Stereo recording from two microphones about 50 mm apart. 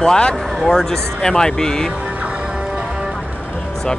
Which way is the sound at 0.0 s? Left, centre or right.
Centre.